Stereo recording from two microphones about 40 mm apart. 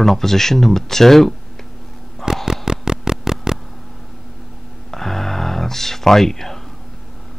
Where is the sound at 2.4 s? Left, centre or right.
Centre.